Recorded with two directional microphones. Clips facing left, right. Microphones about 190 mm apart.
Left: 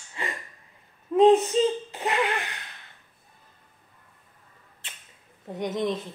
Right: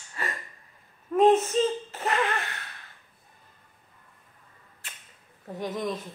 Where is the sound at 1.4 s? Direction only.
15° left (ahead or behind).